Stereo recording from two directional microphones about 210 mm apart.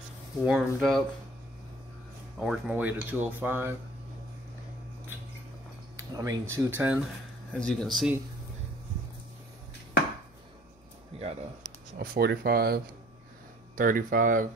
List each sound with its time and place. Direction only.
0.5 s speech: centre (ahead or behind)
2.3 s speech: 5° right (ahead or behind)
5.9 s speech: 15° right (ahead or behind)
7.5 s speech: 5° left (ahead or behind)
11.1 s a sound: 30° right (ahead or behind)
12.0 s speech: 45° right (ahead or behind)